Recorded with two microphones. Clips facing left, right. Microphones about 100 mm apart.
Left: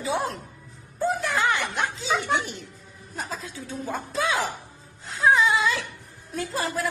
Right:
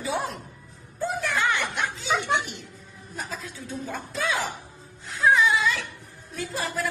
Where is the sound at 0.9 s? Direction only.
20° left (ahead or behind).